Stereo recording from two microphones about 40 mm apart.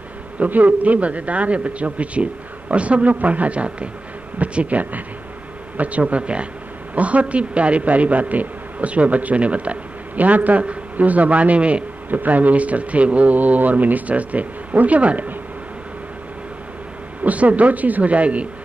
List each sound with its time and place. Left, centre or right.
0.4 s a man's voice: right
12.1 s a man's voice: right
17.2 s a man's voice: right